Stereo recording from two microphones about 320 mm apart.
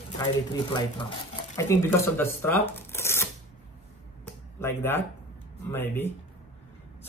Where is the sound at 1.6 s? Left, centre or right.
Centre.